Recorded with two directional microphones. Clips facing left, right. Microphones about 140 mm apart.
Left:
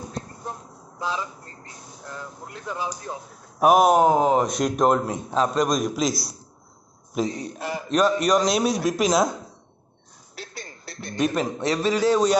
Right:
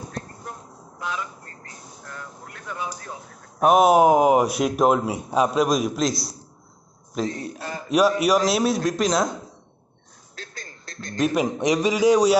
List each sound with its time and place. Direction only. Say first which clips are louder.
0.5 s vehicle: left 2 dB; 30° left (ahead or behind)
2.0 s speech: left 3 dB; 20° left (ahead or behind)
3.5 s speech: right 1 dB; centre (ahead or behind)
4.0 s a man's voice: right 2 dB; 15° right (ahead or behind)
7.2 s a man's voice: left 1 dB; 5° left (ahead or behind)
7.5 s a sound: left 3 dB; 15° left (ahead or behind)
7.9 s a man's voice: right 1 dB; 10° right (ahead or behind)
10.4 s a sound: left 2 dB; 10° left (ahead or behind)
11.4 s a man's voice: right 2 dB; 15° right (ahead or behind)